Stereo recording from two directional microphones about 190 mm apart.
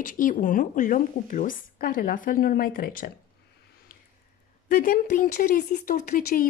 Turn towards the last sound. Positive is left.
turn(degrees=45)  # may be behind; listen again after turning